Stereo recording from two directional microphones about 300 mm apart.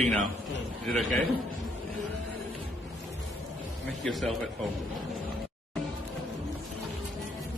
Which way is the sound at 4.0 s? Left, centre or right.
Centre.